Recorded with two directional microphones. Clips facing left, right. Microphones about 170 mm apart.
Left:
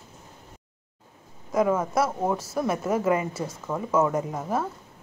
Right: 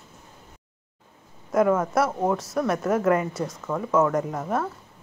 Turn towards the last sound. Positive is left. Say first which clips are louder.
# right 2 dB
turn(degrees=5)  # may be behind; listen again after turning